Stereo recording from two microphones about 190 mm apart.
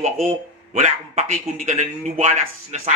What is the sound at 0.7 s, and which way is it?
Speech, 40° right (ahead or behind).